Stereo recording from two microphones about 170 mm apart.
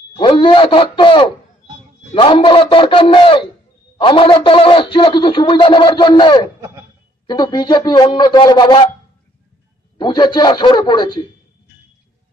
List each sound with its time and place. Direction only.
0.2 s a man's voice: 30° left (ahead or behind)
9.9 s a man's voice: 25° left (ahead or behind)